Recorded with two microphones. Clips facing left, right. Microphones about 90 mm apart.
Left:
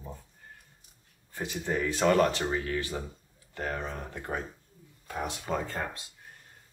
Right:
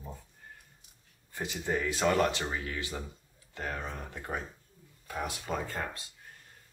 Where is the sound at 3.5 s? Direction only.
20° left (ahead or behind).